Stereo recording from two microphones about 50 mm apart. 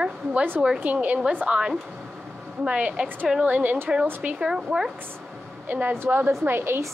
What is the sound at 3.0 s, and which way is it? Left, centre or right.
Speech, right.